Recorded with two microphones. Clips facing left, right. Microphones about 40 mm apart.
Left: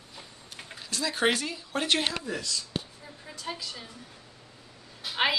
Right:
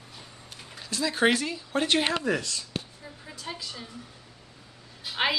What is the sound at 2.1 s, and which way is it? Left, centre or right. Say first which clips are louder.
Speech: right 7 dB; right.